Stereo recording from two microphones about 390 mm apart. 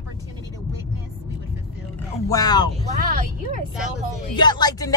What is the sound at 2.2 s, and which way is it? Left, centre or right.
Speech, centre.